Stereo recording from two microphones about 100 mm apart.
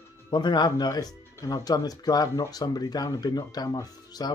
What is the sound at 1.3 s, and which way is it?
Speech, 35° left (ahead or behind).